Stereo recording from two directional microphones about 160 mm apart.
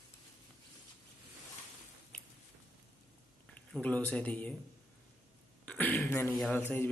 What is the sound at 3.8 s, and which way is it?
Speech, 10° left (ahead or behind).